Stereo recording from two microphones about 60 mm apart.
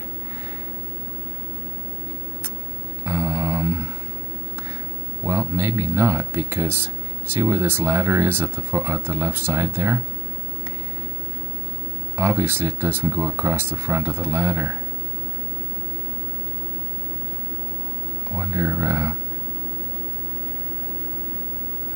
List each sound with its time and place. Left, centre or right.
3.0 s mantra: right
5.2 s speech: right
12.2 s speech: right
18.3 s speech: right